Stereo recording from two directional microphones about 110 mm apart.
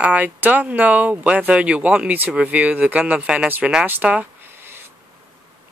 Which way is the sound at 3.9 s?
15° right (ahead or behind).